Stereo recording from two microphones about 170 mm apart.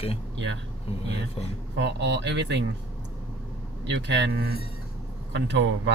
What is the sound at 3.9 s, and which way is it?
Speech, 90° right.